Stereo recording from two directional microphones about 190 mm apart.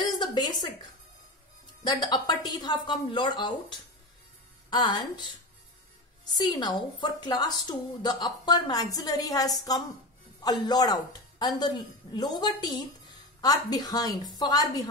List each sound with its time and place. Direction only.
0.0 s a sound: 25° left (ahead or behind)
1.9 s a woman's voice: 20° left (ahead or behind)
6.3 s a woman's voice: 20° left (ahead or behind)